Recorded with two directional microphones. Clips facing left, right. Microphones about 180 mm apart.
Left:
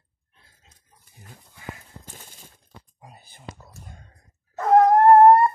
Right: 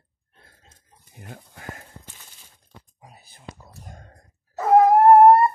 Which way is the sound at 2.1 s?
45° left (ahead or behind).